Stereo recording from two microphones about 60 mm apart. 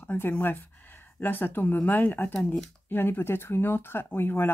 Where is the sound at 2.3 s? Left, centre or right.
Left.